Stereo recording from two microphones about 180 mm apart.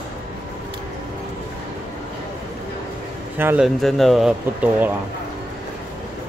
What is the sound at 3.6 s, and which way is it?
Speech, centre (ahead or behind).